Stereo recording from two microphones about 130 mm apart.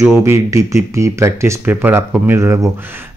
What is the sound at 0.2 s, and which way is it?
Speech, 25° right (ahead or behind).